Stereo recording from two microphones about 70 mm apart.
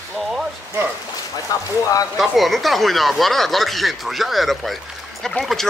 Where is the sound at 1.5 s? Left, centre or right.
Left.